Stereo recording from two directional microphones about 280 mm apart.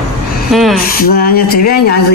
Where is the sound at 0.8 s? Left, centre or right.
Left.